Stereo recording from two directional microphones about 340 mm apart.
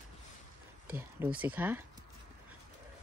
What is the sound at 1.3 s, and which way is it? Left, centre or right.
Speech, centre.